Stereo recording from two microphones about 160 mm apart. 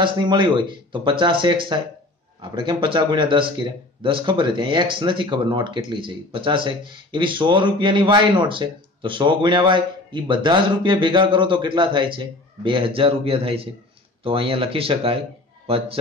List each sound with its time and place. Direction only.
0.0 s a man's voice: 30° right (ahead or behind)